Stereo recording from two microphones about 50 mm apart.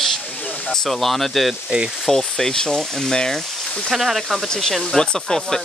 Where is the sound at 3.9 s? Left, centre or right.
Centre.